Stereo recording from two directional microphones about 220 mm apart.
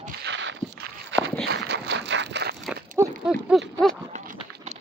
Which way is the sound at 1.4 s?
50° right (ahead or behind).